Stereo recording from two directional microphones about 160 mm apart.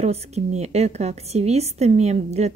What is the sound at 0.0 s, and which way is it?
A woman's voice, 45° right (ahead or behind).